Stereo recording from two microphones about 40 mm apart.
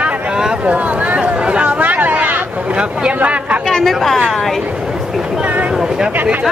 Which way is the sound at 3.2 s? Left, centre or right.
Right.